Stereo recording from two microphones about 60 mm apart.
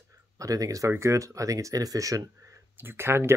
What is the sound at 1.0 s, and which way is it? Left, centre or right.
Speech, right.